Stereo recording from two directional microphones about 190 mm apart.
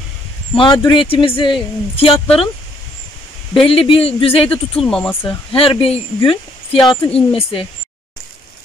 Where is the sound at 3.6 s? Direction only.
30° left (ahead or behind).